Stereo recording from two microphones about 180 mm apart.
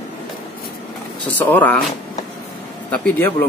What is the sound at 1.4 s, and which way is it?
Speech, 10° left (ahead or behind).